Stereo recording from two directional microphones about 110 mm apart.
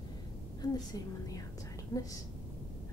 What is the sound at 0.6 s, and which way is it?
A woman's voice, 35° left (ahead or behind).